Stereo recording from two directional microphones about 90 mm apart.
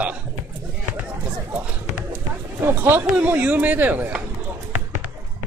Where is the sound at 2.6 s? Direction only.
25° right (ahead or behind).